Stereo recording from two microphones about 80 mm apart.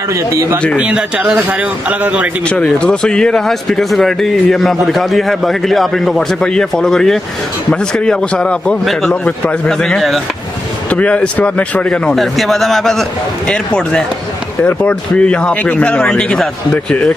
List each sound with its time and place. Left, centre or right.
0.1 s speech: right
0.7 s a man's voice: centre
2.5 s a man's voice: centre
10.9 s a man's voice: centre